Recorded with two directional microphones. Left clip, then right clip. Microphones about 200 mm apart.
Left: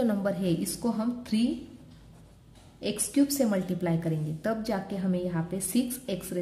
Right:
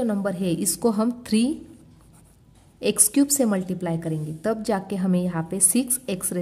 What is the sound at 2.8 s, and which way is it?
A woman's voice, 40° right (ahead or behind).